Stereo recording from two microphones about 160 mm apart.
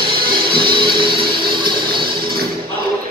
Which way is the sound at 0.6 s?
30° right (ahead or behind).